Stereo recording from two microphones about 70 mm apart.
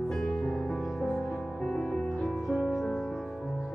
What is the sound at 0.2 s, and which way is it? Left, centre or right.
Music, centre.